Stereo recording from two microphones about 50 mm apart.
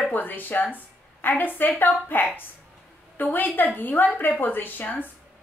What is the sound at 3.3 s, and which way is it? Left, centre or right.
A woman's voice, left.